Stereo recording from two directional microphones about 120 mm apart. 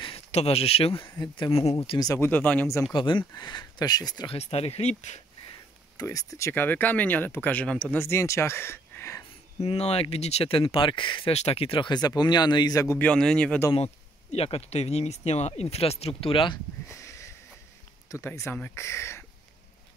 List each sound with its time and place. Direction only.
0.3 s speech: 60° left (ahead or behind)
1.1 s speech: 35° left (ahead or behind); by 1.8 s 55° left (ahead or behind)
2.0 s speech: 30° left (ahead or behind)
2.2 s speech: 15° left (ahead or behind)
2.9 s speech: 45° left (ahead or behind)
4.3 s speech: 55° left (ahead or behind)
5.9 s speech: 25° left (ahead or behind); by 8.0 s 10° left (ahead or behind)
8.0 s speech: 25° left (ahead or behind)
9.6 s speech: 60° left (ahead or behind); by 11.3 s 40° left (ahead or behind)
11.3 s speech: 60° left (ahead or behind); by 13.0 s 25° left (ahead or behind)
13.0 s speech: 5° left (ahead or behind)
13.7 s speech: 60° left (ahead or behind)
16.9 s sniff: 25° left (ahead or behind)
18.1 s speech: 25° left (ahead or behind)